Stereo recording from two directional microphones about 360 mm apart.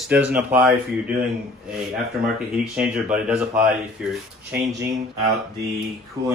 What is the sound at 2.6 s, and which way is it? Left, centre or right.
Speech, centre.